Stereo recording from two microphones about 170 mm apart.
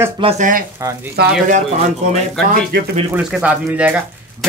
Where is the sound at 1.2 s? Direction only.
70° right (ahead or behind).